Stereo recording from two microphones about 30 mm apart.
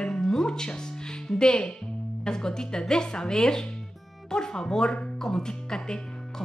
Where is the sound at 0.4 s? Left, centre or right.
Left.